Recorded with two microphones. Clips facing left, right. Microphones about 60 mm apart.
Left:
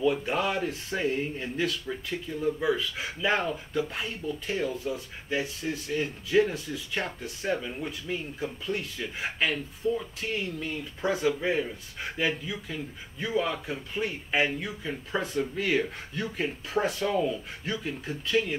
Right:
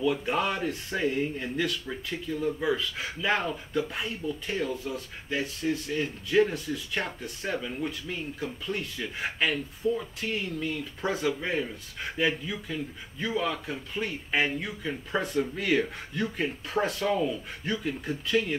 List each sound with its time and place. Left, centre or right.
0.0 s speech: centre